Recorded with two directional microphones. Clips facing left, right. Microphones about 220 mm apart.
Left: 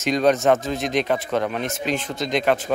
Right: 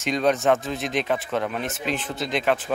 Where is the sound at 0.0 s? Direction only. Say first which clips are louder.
Left 3 dB; centre (ahead or behind).